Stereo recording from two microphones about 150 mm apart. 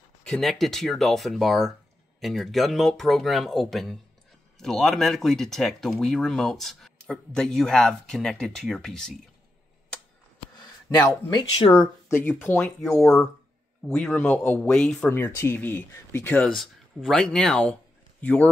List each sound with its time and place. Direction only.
0.2 s speech: 5° left (ahead or behind)
10.9 s speech: 30° left (ahead or behind)
11.8 s speech: 15° left (ahead or behind)
12.5 s speech: 5° left (ahead or behind)
15.0 s speech: 15° left (ahead or behind)